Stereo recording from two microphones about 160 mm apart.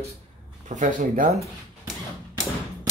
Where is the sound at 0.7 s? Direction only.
55° right (ahead or behind).